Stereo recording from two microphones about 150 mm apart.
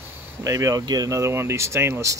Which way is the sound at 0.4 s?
20° right (ahead or behind).